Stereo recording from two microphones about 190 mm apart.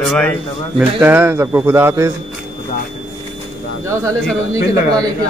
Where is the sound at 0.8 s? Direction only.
10° right (ahead or behind).